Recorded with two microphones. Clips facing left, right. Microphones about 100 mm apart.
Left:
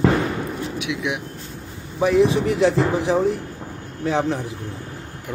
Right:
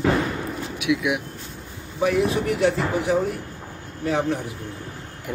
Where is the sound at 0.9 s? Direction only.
20° left (ahead or behind).